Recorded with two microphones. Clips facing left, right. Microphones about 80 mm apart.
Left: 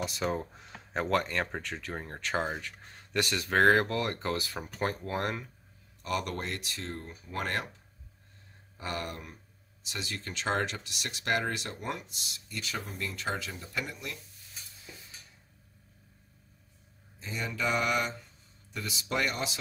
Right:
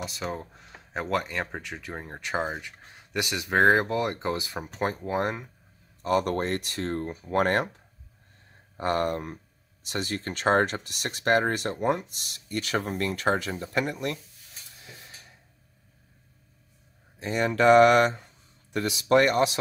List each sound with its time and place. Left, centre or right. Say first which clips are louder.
0.0 s speech: left 1 dB; centre
6.0 s speech: right 9 dB; right
8.7 s speech: right 11 dB; right
14.8 s a sound: right 5 dB; right
17.2 s speech: right 11 dB; right